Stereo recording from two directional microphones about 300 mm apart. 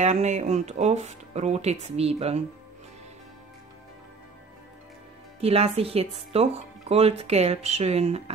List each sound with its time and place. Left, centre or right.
0.0 s speech: right
5.4 s speech: centre